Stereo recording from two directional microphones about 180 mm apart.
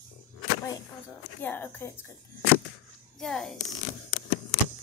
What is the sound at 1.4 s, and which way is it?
Speech, 10° left (ahead or behind).